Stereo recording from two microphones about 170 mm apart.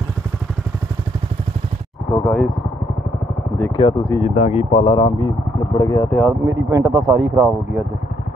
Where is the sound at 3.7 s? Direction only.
20° left (ahead or behind).